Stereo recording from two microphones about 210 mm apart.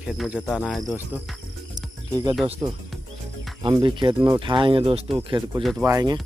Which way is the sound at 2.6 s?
25° right (ahead or behind).